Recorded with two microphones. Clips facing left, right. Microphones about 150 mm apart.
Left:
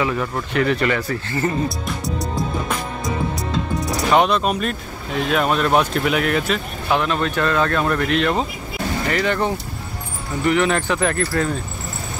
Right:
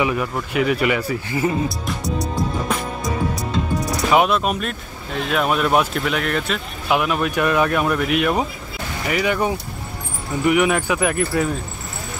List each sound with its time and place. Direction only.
0.0 s speech: 10° right (ahead or behind)
2.0 s music: centre (ahead or behind)
4.1 s speech: 5° right (ahead or behind)
6.9 s speech: 10° right (ahead or behind)